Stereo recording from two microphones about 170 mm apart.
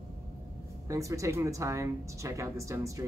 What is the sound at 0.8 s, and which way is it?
Speech, 20° right (ahead or behind).